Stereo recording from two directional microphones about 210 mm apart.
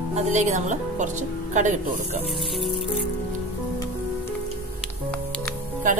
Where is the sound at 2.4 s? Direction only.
Centre (ahead or behind).